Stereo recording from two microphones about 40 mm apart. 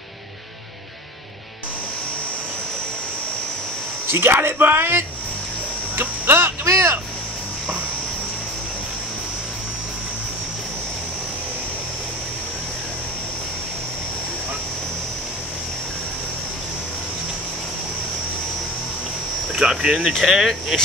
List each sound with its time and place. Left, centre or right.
4.1 s speech: right
5.9 s a sound: right
19.5 s cricket: centre
20.2 s speech: centre